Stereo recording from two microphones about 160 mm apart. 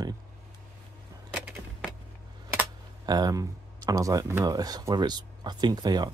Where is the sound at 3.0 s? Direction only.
25° right (ahead or behind).